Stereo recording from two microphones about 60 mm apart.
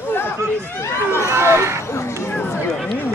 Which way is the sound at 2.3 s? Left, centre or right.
Left.